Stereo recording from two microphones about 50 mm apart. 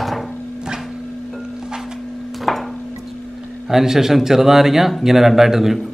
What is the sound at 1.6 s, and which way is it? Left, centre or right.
Music, centre.